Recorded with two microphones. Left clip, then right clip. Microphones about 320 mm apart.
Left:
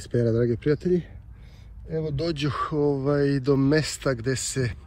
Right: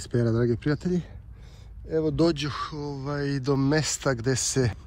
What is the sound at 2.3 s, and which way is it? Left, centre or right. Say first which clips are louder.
Speech: left 5 dB; centre.